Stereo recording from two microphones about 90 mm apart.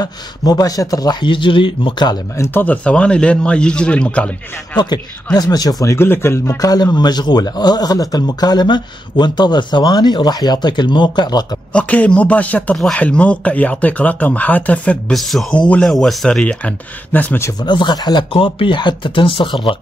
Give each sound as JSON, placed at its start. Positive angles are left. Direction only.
{"t": 0.0, "sound": "a man's voice", "side_deg": 45}
{"t": 1.2, "sound": "speech", "side_deg": 65}
{"t": 2.3, "sound": "speech", "side_deg": 35}
{"t": 2.6, "sound": "speech", "side_deg": 15}
{"t": 4.7, "sound": "a man's voice", "side_deg": 50}
{"t": 5.9, "sound": "a man's voice", "side_deg": 25}
{"t": 11.7, "sound": "speech", "side_deg": 15}
{"t": 15.1, "sound": "speech", "side_deg": 0}
{"t": 17.1, "sound": "speech", "side_deg": 20}
{"t": 17.6, "sound": "speech", "side_deg": 60}
{"t": 18.3, "sound": "speech", "side_deg": 80}